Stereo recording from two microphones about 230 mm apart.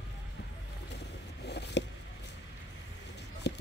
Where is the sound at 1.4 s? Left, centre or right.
Left.